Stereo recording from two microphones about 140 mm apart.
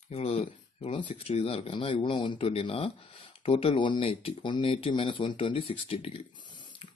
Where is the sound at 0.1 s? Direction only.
45° left (ahead or behind).